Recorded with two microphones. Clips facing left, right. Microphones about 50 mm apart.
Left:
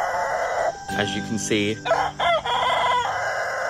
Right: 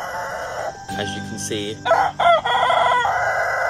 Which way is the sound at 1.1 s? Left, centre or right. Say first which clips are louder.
Left 3 dB; left.